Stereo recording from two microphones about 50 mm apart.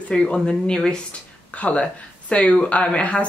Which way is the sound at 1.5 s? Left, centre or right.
Left.